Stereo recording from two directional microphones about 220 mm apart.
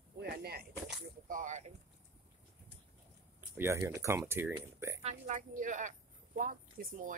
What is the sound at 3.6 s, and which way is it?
Speech, 10° right (ahead or behind).